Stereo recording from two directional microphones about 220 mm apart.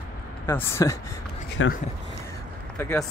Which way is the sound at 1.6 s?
65° left (ahead or behind).